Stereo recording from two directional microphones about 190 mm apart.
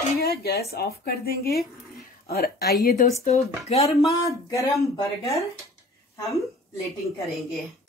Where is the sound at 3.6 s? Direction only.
35° left (ahead or behind).